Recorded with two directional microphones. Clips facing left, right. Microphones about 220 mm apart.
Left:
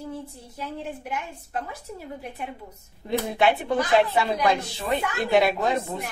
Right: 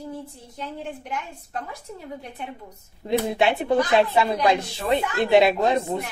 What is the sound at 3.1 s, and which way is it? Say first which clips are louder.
A woman's voice: right 1 dB; 20° right (ahead or behind).